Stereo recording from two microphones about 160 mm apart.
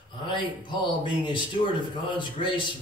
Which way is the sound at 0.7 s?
30° left (ahead or behind).